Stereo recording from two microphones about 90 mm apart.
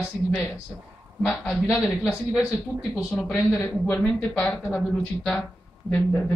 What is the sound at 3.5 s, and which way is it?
Speech, 20° left (ahead or behind).